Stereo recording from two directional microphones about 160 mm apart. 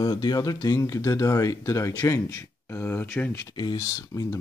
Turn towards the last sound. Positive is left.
turn(degrees=20)  # may be behind; listen again after turning